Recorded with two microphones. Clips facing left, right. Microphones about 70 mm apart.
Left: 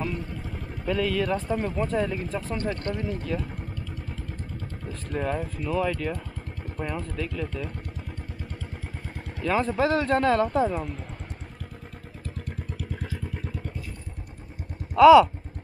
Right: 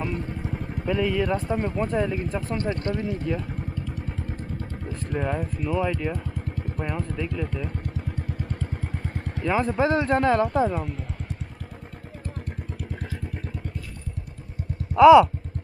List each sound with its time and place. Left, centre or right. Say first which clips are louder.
0.2 s vehicle: right 4 dB; centre
1.4 s speech: right 1 dB; centre
2.6 s speech: right 2 dB; centre
2.9 s speech: right 2 dB; centre
4.8 s speech: right 1 dB; centre
9.4 s speech: right 1 dB; centre
10.5 s speech: right 1 dB; centre
15.0 s speech: right 1 dB; centre